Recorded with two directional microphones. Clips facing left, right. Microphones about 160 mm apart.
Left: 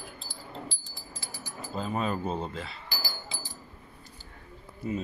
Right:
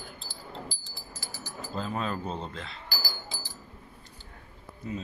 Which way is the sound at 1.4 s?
5° left (ahead or behind).